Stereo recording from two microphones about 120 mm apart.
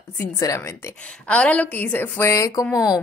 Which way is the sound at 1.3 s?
10° left (ahead or behind).